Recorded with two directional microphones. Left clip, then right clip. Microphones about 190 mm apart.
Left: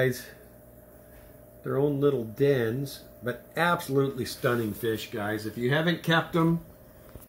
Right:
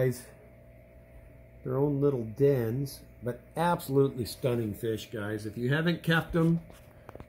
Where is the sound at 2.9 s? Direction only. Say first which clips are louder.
Left 3 dB; 10° left (ahead or behind).